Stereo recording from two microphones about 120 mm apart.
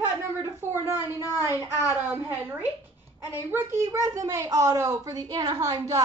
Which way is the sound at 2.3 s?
15° right (ahead or behind).